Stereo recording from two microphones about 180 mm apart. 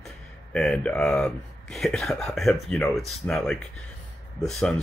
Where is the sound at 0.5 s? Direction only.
5° left (ahead or behind).